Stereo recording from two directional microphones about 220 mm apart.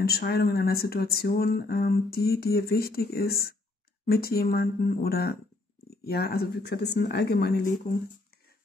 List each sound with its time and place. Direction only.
0.0 s speech: 45° left (ahead or behind)